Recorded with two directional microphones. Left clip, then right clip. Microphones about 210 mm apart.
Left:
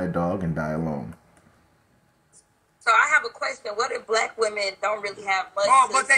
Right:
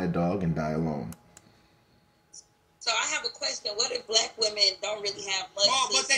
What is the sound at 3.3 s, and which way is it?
Speech, 5° left (ahead or behind).